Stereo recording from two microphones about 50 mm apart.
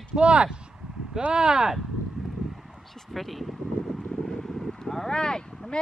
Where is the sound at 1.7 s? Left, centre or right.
Centre.